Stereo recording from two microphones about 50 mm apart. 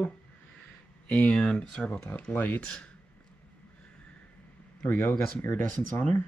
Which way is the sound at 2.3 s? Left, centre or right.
Left.